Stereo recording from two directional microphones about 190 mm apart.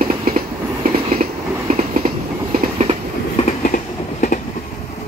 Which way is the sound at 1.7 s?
45° right (ahead or behind).